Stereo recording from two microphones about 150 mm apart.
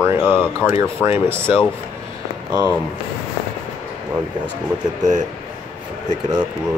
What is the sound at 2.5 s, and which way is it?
Speech, 25° right (ahead or behind).